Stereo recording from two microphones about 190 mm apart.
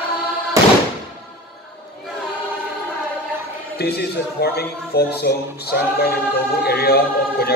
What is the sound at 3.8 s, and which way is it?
Speech, 55° left (ahead or behind).